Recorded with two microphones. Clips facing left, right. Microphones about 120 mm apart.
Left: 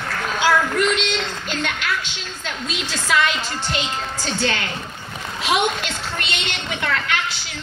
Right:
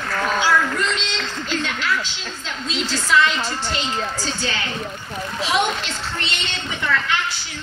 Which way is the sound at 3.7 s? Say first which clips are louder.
Right 1 dB; 65° left (ahead or behind).